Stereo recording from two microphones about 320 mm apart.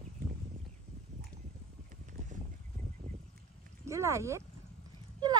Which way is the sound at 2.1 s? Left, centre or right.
Right.